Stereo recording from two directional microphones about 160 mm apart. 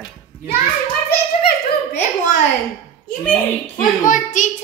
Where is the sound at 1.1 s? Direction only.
80° left.